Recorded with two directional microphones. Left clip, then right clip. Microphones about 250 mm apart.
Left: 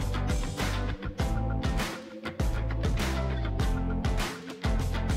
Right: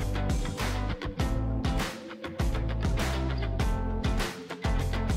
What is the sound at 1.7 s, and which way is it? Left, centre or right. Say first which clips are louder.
Music: even; centre.